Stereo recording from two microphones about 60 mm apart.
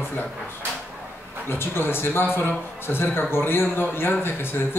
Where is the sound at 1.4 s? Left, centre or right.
Left.